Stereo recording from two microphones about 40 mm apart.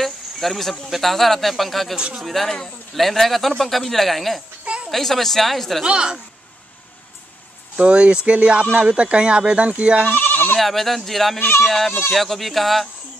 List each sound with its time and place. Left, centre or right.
0.0 s speech: centre
5.9 s speech: centre
7.7 s speech: right
10.1 s bleat: left
10.6 s speech: centre